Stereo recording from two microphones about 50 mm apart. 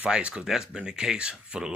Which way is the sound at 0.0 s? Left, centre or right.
Right.